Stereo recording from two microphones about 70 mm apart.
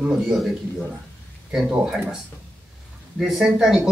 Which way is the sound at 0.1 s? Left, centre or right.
Centre.